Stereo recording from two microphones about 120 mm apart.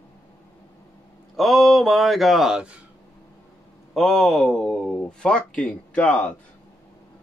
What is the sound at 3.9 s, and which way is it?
Speech, centre (ahead or behind).